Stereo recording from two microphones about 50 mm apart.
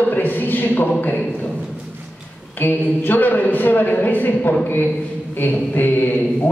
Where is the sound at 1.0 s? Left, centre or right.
Left.